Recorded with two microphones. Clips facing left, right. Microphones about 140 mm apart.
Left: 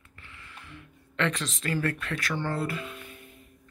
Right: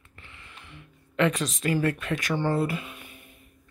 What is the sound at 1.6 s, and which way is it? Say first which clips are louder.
Speech: right 4 dB; 15° right (ahead or behind).